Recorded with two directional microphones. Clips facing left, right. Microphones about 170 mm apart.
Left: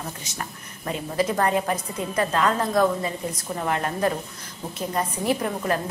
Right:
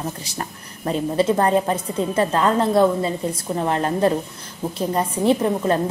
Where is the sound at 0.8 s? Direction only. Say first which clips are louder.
Right 5 dB; 30° right (ahead or behind).